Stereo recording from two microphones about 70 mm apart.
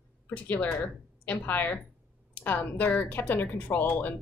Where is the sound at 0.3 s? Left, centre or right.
Left.